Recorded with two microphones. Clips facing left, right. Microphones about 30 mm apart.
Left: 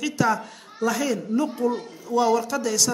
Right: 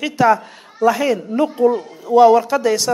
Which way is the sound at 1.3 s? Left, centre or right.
Right.